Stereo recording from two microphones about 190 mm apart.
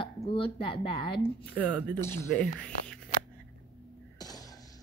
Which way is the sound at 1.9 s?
15° left (ahead or behind).